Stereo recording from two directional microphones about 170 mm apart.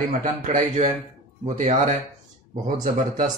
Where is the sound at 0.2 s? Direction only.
50° right (ahead or behind).